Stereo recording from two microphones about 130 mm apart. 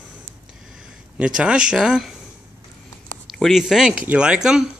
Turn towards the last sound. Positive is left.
turn(degrees=-5)  # may be behind; listen again after turning